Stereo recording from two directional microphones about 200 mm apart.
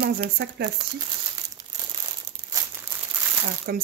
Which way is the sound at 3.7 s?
50° right (ahead or behind).